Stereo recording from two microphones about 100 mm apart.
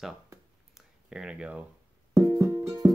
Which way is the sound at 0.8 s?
5° right (ahead or behind).